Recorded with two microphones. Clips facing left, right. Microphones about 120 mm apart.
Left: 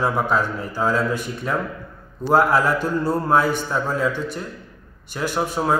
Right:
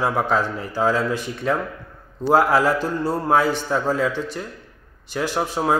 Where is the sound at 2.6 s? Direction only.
35° right (ahead or behind).